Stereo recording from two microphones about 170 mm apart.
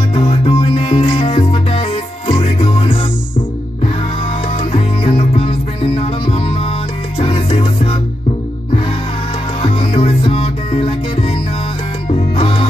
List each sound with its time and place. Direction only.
0.1 s music: 35° left (ahead or behind)
4.7 s music: 35° left (ahead or behind)
9.6 s music: 35° left (ahead or behind)